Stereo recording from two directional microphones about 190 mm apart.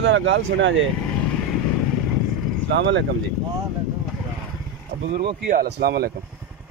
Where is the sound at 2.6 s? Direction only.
70° right (ahead or behind).